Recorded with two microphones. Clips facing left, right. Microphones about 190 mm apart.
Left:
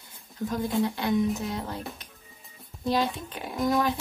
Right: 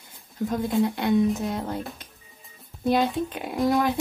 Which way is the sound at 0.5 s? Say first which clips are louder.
Right 3 dB; 25° right (ahead or behind).